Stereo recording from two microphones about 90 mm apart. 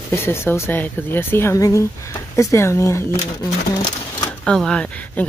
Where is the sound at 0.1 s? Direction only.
30° left (ahead or behind).